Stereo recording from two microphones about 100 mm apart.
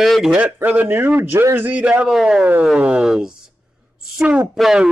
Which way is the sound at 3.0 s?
5° right (ahead or behind).